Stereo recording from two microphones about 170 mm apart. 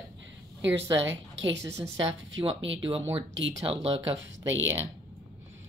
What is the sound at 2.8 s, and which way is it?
Speech, 35° right (ahead or behind).